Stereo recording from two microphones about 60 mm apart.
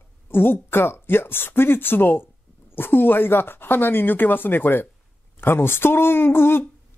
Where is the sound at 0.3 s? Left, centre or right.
Left.